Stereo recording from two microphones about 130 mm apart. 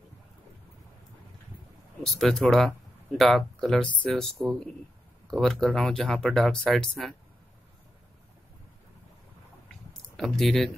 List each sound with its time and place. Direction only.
2.0 s speech: 5° left (ahead or behind)
5.3 s speech: 5° left (ahead or behind)
10.1 s speech: centre (ahead or behind)